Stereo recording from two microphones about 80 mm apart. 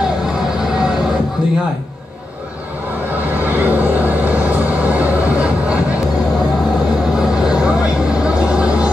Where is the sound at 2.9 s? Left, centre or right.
Right.